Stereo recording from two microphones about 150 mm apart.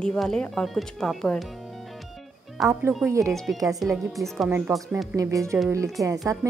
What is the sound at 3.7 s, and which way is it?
Speech, centre (ahead or behind).